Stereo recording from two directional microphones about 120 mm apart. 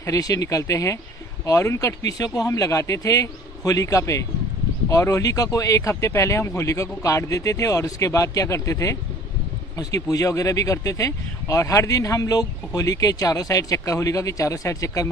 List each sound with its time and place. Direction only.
0.0 s speech: 30° left (ahead or behind)